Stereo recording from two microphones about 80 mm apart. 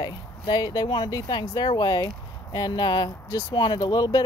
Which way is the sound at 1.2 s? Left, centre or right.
Left.